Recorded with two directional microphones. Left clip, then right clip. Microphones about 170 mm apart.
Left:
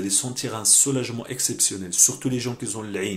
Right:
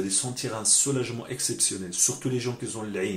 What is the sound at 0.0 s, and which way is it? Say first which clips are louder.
Speech: left 3 dB; 35° left (ahead or behind).